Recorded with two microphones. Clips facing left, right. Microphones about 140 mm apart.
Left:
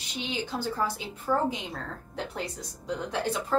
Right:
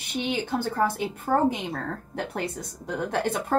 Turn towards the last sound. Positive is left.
turn(degrees=-55)  # may be behind; listen again after turning